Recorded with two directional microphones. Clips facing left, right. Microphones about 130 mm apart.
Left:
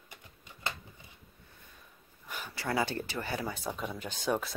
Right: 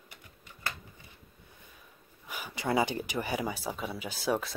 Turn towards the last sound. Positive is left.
turn(degrees=0)  # may be behind; listen again after turning